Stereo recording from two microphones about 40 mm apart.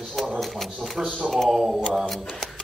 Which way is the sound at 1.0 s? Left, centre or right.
Centre.